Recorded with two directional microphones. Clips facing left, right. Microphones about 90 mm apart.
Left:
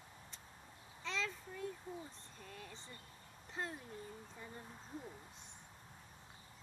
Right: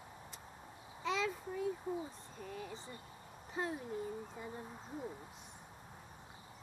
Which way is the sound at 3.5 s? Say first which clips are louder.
Right 6 dB; 10° right (ahead or behind).